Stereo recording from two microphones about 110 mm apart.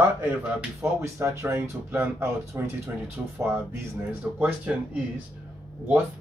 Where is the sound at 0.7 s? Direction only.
25° right (ahead or behind); by 4.8 s 5° right (ahead or behind).